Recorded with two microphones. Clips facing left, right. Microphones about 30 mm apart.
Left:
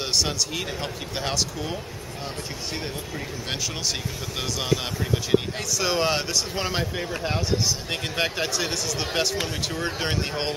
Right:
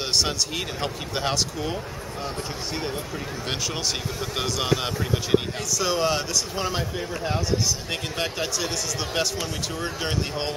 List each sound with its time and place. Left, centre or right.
0.0 s speech: centre
5.8 s speech: centre